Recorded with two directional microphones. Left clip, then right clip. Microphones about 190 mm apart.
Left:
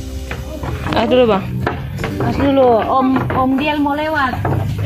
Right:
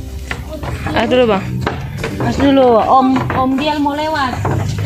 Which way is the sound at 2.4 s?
55° right (ahead or behind).